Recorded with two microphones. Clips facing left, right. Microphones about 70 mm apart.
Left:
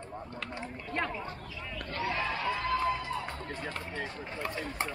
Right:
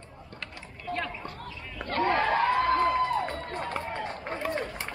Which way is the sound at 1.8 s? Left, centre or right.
Right.